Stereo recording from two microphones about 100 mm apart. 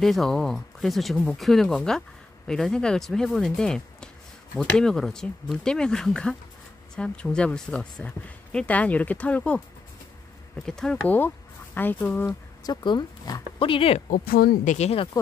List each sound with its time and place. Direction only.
0.0 s speech: 5° left (ahead or behind)
10.6 s speech: 5° left (ahead or behind)
11.1 s speech: 20° left (ahead or behind)
12.8 s speech: 45° left (ahead or behind)
13.6 s speech: 60° left (ahead or behind)
14.8 s speech: 90° left